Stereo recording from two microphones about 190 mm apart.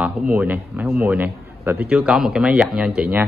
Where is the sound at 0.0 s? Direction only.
10° right (ahead or behind).